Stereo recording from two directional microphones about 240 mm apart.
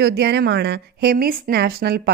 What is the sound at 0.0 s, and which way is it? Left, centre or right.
A woman's voice, right.